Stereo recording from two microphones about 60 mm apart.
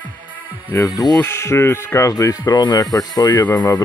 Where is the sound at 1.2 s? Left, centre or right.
Left.